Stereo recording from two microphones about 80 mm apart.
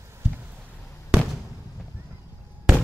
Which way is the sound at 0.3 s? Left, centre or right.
Right.